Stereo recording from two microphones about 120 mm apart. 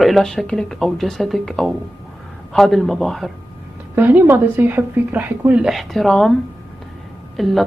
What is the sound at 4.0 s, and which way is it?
Speech, 15° right (ahead or behind).